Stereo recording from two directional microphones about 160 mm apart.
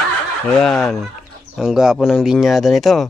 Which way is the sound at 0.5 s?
5° left (ahead or behind).